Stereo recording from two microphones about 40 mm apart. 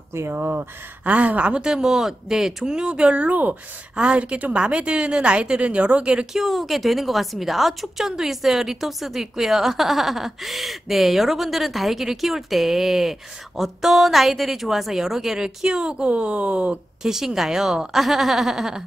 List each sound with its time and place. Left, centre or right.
0.2 s speech: right
1.0 s speech: right
1.7 s speech: centre
2.7 s a woman's voice: right
3.9 s a woman's voice: right
6.3 s a woman's voice: centre
15.4 s a woman's voice: right
17.0 s speech: centre